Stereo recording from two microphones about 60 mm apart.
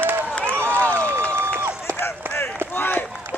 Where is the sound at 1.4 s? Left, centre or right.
Right.